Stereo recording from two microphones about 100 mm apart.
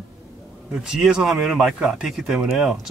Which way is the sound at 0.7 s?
5° right (ahead or behind).